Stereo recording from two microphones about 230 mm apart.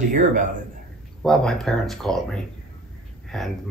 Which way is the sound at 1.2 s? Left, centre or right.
Centre.